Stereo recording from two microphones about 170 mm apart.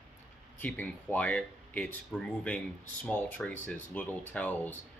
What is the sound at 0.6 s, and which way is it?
Speech, 10° left (ahead or behind).